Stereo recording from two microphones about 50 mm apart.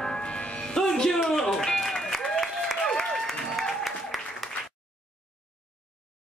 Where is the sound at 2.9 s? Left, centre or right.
Centre.